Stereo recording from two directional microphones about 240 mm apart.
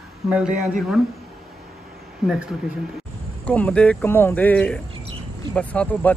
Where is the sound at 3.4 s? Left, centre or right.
Centre.